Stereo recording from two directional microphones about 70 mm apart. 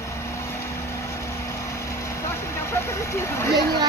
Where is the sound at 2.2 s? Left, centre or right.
Left.